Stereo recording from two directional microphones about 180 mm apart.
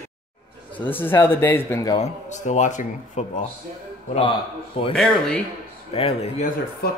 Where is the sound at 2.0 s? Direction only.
40° left (ahead or behind).